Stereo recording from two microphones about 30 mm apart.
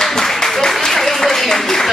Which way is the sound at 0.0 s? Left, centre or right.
Centre.